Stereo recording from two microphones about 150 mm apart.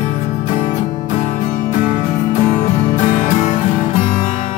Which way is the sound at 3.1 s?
55° left (ahead or behind).